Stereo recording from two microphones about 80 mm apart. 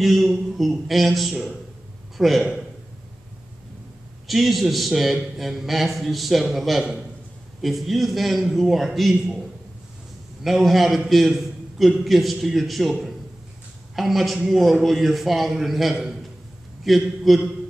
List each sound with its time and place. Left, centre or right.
0.0 s a man's voice: centre
4.3 s a man's voice: centre
10.4 s a man's voice: centre
13.9 s a man's voice: centre